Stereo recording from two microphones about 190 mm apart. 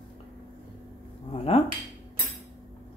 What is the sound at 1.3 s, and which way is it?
Speech, 30° left (ahead or behind).